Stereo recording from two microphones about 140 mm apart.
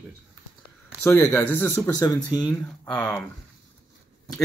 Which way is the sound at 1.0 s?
20° left (ahead or behind).